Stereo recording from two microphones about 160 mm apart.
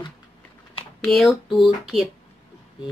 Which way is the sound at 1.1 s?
Centre (ahead or behind).